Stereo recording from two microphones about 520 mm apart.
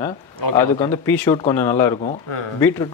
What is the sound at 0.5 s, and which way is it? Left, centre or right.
Speech, centre.